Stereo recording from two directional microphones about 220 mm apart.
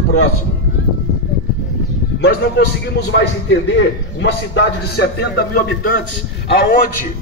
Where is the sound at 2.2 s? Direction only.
50° left (ahead or behind).